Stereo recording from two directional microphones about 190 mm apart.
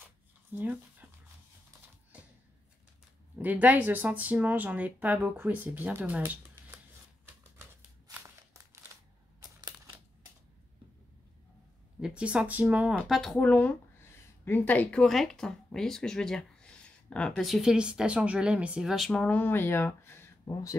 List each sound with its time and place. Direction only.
0.6 s speech: 10° right (ahead or behind)
3.3 s speech: 10° right (ahead or behind)
8.1 s walk: 15° right (ahead or behind)
9.6 s a sound: 20° right (ahead or behind)
12.0 s a woman's voice: 5° right (ahead or behind); by 20.7 s 15° left (ahead or behind)